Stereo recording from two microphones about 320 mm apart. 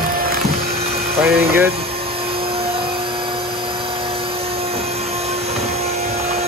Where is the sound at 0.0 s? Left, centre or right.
Right.